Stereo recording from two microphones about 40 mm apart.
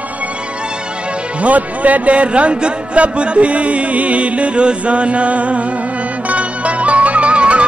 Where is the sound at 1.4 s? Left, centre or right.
Right.